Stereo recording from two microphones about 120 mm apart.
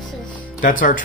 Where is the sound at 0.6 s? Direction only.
90° left.